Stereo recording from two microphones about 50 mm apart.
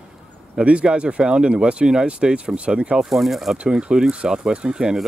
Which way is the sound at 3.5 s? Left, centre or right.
Right.